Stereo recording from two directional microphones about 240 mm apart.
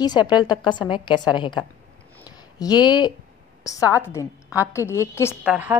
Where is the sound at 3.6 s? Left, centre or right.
Centre.